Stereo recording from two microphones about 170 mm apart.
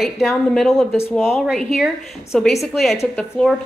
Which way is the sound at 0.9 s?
15° left (ahead or behind).